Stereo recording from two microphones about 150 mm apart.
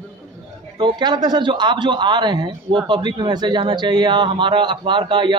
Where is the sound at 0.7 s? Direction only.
30° right (ahead or behind).